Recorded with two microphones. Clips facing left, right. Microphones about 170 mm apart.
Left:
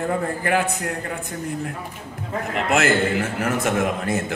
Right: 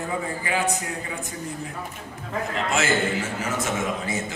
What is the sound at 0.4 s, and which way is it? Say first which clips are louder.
Speech: left 4 dB; 60° left (ahead or behind).